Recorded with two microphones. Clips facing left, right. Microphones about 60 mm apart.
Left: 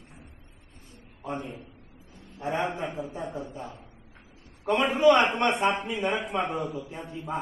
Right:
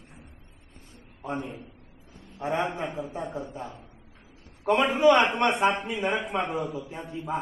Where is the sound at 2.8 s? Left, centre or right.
Right.